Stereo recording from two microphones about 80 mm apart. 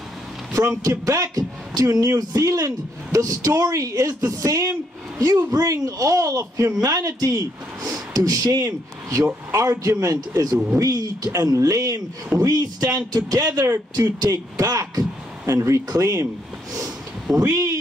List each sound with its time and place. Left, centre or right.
0.6 s speech: right
17.4 s speech: right